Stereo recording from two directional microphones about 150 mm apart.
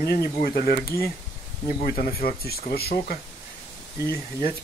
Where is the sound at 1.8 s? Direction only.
70° left (ahead or behind); by 3.1 s 90° left.